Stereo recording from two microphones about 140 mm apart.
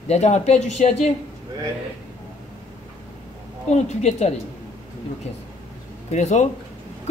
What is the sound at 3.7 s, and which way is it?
Speech, 55° left (ahead or behind).